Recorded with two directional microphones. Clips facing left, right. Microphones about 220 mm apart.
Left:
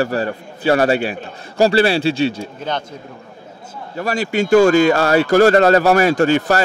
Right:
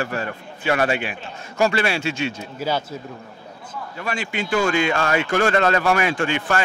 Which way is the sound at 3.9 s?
40° left (ahead or behind).